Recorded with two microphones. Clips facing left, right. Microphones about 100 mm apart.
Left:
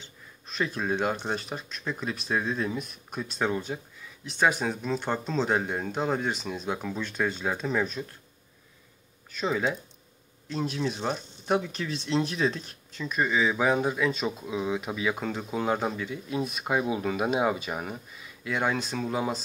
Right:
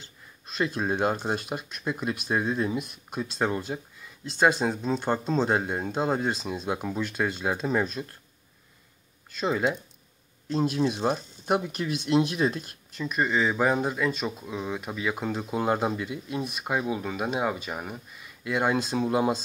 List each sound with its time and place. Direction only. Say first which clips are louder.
0.6 s speech: right 2 dB; 15° right (ahead or behind)
4.4 s speech: right 2 dB; 20° right (ahead or behind)
5.0 s speech: right 3 dB; 10° right (ahead or behind)
9.5 s speech: right 2 dB; 10° right (ahead or behind)
10.9 s speech: right 4 dB; 15° right (ahead or behind)
13.2 s speech: right 1 dB; centre (ahead or behind)